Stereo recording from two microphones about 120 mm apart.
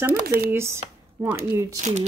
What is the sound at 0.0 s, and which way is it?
Speech, 15° right (ahead or behind).